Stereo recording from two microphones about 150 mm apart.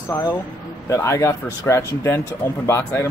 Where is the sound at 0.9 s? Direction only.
20° left (ahead or behind).